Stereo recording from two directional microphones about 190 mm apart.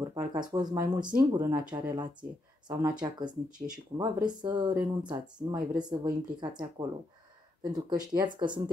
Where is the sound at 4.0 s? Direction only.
25° right (ahead or behind).